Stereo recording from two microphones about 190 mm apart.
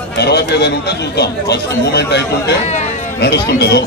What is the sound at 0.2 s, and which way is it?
Speech, 60° left (ahead or behind).